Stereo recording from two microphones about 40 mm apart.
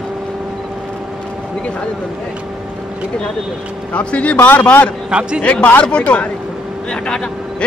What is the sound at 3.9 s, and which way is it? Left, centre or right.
Speech, left.